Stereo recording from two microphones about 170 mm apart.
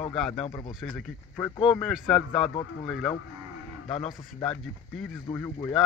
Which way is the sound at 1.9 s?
Centre (ahead or behind).